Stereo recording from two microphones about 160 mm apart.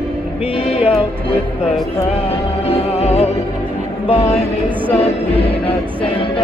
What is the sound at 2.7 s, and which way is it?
Music, 40° left (ahead or behind).